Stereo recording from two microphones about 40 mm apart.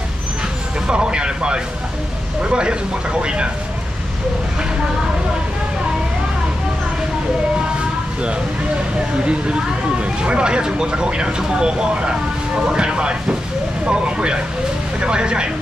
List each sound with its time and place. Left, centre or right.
0.8 s speech: right
9.2 s speech: right